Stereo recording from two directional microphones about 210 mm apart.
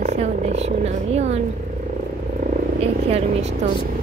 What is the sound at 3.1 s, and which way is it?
Speech, 30° right (ahead or behind).